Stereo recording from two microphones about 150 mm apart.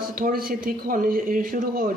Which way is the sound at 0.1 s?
70° right (ahead or behind).